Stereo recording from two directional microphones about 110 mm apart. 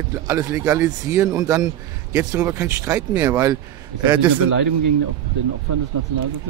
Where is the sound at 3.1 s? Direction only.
15° right (ahead or behind).